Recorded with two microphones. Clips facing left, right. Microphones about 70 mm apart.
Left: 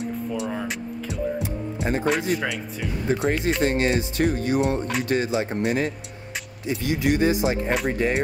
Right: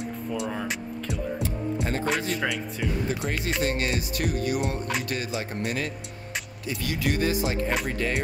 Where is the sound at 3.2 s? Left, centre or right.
Left.